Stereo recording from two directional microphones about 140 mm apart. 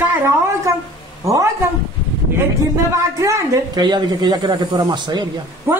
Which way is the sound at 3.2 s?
25° right (ahead or behind).